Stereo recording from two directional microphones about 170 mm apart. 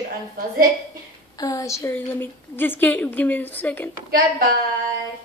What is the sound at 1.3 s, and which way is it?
A woman's voice, 20° left (ahead or behind).